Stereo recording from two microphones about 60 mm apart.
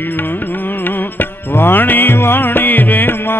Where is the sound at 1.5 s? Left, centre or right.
Left.